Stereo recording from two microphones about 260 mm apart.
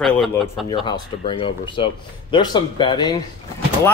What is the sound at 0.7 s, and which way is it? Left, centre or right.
Speech, centre.